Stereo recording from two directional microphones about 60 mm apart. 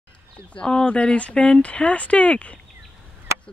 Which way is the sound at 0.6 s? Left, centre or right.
Centre.